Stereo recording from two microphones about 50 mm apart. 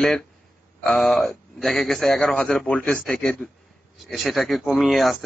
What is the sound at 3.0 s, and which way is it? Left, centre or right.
Speech, centre.